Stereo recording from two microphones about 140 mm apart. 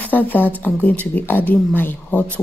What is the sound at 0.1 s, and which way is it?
Speech, 15° left (ahead or behind).